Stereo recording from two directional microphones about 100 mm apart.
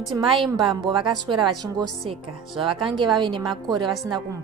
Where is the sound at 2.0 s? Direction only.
60° right (ahead or behind).